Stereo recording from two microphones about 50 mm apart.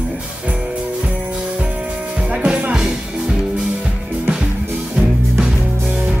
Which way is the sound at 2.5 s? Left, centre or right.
Centre.